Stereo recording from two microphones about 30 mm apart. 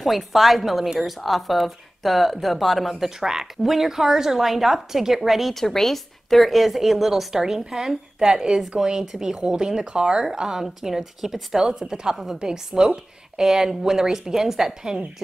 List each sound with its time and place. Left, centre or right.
0.0 s speech: centre
3.2 s speech: centre
3.6 s a woman's voice: centre
5.5 s a woman's voice: centre
9.4 s speech: right
10.3 s a woman's voice: centre
11.8 s a woman's voice: right